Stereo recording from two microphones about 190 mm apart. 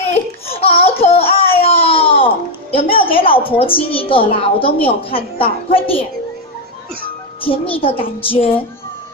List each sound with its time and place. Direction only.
0.5 s a sound: 30° left (ahead or behind)
3.5 s a woman's voice: 30° left (ahead or behind)
7.7 s a woman's voice: 30° left (ahead or behind)